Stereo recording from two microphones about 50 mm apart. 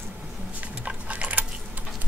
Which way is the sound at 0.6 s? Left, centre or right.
Right.